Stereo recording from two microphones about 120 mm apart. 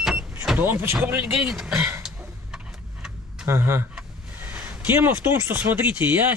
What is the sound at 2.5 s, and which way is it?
Vehicle, 5° right (ahead or behind).